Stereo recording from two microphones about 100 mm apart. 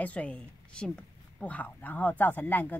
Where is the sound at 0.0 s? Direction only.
15° left (ahead or behind).